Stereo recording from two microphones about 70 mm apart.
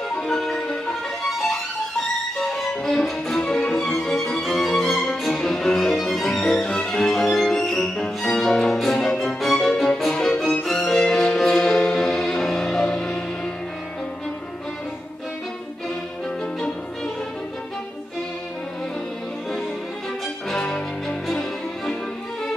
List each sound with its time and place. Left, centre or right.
0.3 s music: centre
2.4 s music: centre
4.3 s violin: centre
10.6 s music: centre
20.4 s music: centre